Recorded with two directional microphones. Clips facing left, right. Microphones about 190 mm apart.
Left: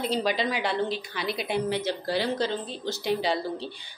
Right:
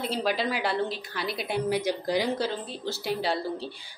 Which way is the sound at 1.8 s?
15° right (ahead or behind).